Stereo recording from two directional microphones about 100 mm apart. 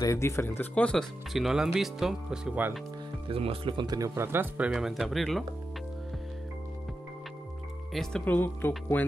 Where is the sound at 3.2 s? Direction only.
65° right (ahead or behind).